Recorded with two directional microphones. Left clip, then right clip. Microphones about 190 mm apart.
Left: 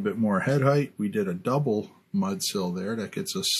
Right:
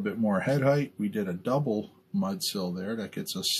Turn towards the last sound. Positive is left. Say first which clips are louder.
# left 3 dB
turn(degrees=50)  # may be behind; listen again after turning